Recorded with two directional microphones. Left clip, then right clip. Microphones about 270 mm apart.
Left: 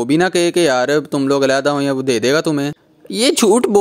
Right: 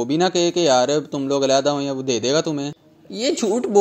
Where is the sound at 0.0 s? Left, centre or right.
Left.